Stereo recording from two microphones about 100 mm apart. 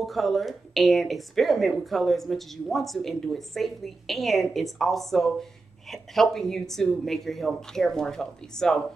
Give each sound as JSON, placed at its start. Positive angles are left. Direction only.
{"t": 0.0, "sound": "speech", "side_deg": 0}